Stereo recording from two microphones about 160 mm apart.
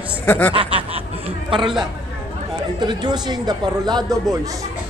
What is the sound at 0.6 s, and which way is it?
Snicker, 35° right (ahead or behind).